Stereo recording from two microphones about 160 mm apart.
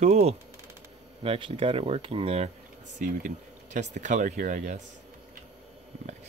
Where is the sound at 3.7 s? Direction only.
50° right (ahead or behind).